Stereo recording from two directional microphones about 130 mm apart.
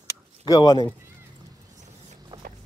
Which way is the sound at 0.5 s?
30° left (ahead or behind).